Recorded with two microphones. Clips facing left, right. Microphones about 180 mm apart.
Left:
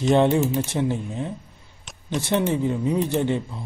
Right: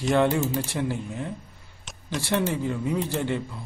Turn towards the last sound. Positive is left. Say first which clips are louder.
# left 4 dB
turn(degrees=20)  # may be behind; listen again after turning